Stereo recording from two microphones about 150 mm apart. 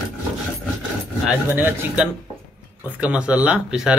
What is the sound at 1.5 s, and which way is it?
Speech, 10° right (ahead or behind).